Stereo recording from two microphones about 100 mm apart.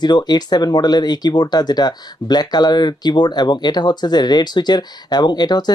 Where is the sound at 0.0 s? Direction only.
45° left (ahead or behind).